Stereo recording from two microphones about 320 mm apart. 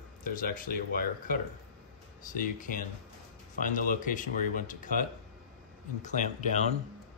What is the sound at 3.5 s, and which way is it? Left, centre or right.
A man's voice, left.